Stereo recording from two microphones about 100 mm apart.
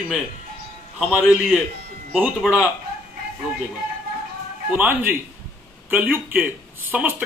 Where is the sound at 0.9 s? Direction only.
10° right (ahead or behind).